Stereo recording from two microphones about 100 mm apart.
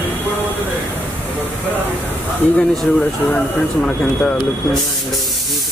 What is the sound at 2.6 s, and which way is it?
Speech, 5° left (ahead or behind).